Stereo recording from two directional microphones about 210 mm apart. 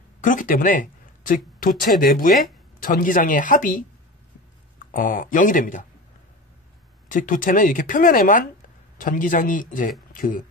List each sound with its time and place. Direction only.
0.2 s speech: 40° left (ahead or behind)
4.9 s speech: 40° left (ahead or behind)
7.1 s speech: 40° left (ahead or behind)